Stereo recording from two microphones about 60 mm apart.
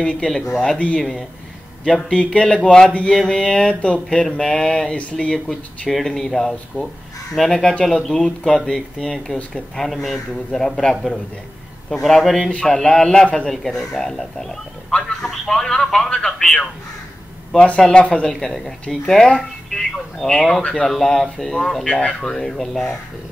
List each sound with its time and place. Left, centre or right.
0.0 s a man's voice: centre
0.7 s a man's voice: left
2.1 s a man's voice: centre
6.7 s a man's voice: left
7.3 s a man's voice: centre
17.6 s a man's voice: centre
18.2 s a man's voice: centre